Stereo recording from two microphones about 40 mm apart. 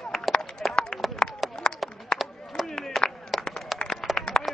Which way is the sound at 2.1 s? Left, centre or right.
Centre.